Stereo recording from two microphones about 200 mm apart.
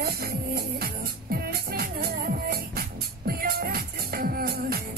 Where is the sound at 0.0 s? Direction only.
50° right (ahead or behind).